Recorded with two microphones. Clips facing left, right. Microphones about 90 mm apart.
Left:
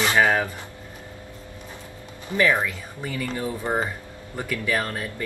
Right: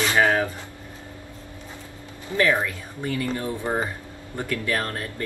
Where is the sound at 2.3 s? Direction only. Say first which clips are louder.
Even; 15° left (ahead or behind).